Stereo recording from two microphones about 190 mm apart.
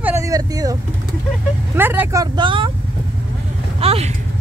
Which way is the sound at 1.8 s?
10° right (ahead or behind).